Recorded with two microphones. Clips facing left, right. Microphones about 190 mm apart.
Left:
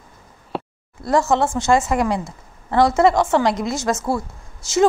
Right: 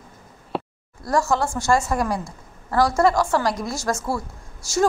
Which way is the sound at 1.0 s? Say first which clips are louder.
Left 4 dB; 25° left (ahead or behind).